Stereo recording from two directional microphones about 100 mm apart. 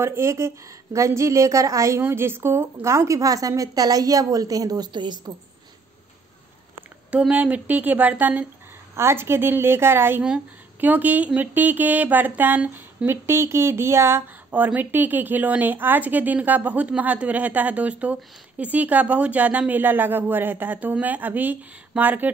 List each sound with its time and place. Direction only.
0.0 s a woman's voice: 25° right (ahead or behind); by 5.3 s 45° right (ahead or behind)
7.1 s a woman's voice: 10° right (ahead or behind)
10.2 s speech: 15° right (ahead or behind)